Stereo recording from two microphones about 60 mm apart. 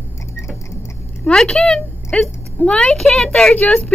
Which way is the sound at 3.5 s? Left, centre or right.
Left.